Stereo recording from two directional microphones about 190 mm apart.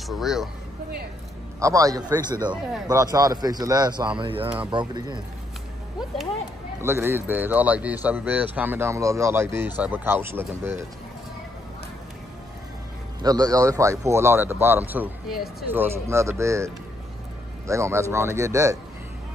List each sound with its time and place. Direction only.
0.0 s speech: centre (ahead or behind)
1.6 s speech: 15° right (ahead or behind)
6.8 s speech: 10° right (ahead or behind)
13.2 s speech: 20° right (ahead or behind)